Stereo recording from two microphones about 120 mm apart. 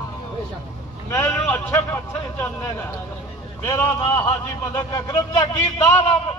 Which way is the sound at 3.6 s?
20° left (ahead or behind).